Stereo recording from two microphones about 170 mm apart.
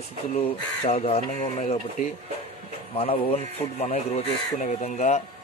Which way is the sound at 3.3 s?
40° left (ahead or behind).